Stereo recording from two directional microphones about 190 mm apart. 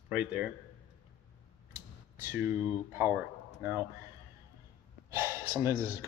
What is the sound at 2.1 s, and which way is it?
Speech, 10° right (ahead or behind).